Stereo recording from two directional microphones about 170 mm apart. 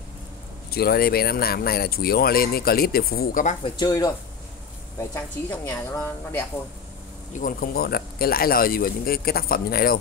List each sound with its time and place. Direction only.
0.7 s speech: 65° left (ahead or behind)
3.7 s speech: 25° left (ahead or behind)
5.1 s a woman's voice: 15° left (ahead or behind)
7.3 s speech: 55° left (ahead or behind)